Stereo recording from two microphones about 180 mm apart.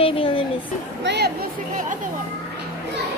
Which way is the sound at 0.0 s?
30° left (ahead or behind).